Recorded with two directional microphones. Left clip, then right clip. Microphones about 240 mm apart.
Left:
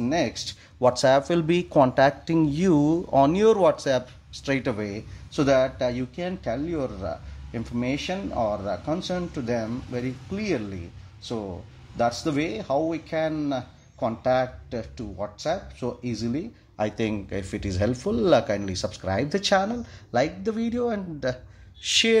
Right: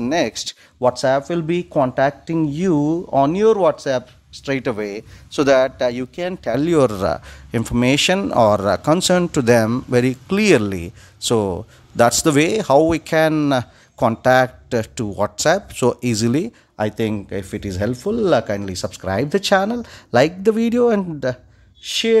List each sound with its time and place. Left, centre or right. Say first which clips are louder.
0.0 s speech: right 6 dB; right
0.7 s speech: right 3 dB; centre; by 16.4 s right
16.7 s speech: right 5 dB; right
21.8 s speech: right 1 dB; centre